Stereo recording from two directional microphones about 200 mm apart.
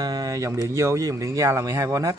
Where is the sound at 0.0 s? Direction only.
20° right (ahead or behind).